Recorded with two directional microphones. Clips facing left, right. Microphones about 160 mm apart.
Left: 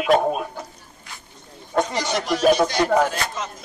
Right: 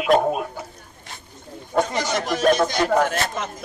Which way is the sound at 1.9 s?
50° right (ahead or behind).